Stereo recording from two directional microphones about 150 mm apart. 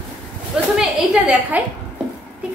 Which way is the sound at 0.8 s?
5° right (ahead or behind).